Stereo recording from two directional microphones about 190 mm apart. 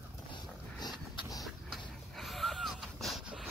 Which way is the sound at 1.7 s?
Centre (ahead or behind).